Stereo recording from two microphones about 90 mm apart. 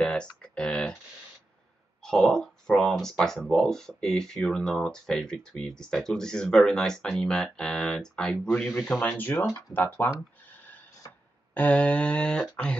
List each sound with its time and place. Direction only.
0.0 s a sound: 10° left (ahead or behind)
2.0 s speech: 5° left (ahead or behind)
9.2 s speech: 20° left (ahead or behind)
11.5 s speech: 15° left (ahead or behind)